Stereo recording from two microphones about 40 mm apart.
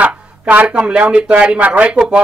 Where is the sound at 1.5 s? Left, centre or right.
Right.